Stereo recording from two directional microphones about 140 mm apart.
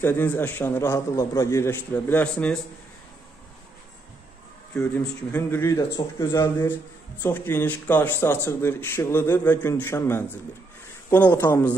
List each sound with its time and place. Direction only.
0.0 s a man's voice: 15° left (ahead or behind)
4.7 s a man's voice: 10° left (ahead or behind)